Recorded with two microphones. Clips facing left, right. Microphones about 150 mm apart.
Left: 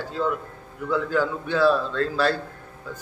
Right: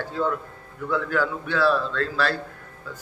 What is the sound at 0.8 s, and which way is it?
A man's voice, 20° left (ahead or behind).